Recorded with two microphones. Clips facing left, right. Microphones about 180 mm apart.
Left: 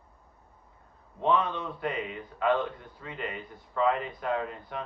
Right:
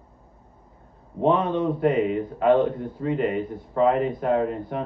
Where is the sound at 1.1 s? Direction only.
40° right (ahead or behind).